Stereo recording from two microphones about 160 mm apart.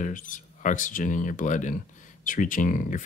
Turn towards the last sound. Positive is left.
turn(degrees=55)  # may be behind; listen again after turning